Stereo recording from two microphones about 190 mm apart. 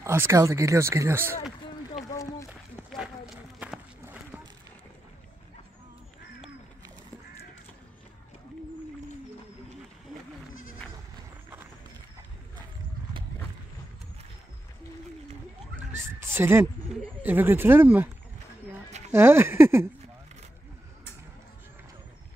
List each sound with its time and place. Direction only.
0.0 s speech: 15° right (ahead or behind)
2.9 s walk: 5° right (ahead or behind)
15.9 s a sound: 10° right (ahead or behind)
17.2 s speech: 10° right (ahead or behind)
18.9 s a sound: 35° right (ahead or behind)
19.1 s speech: 10° right (ahead or behind)